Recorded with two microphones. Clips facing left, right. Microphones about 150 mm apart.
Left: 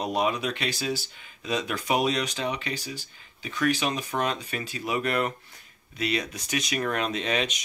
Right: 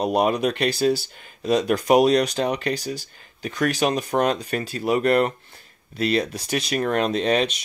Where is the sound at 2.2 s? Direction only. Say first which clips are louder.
Right 7 dB; 50° right (ahead or behind).